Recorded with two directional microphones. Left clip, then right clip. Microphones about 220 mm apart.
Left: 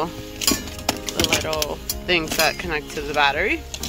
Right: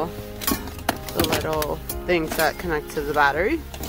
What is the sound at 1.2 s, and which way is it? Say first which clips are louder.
Speech: left 1 dB; 10° right (ahead or behind).